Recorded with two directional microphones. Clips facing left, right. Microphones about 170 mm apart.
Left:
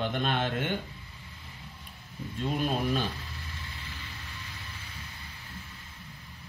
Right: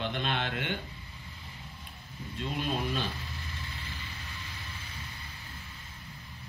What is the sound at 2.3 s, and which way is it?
Speech, 45° left (ahead or behind).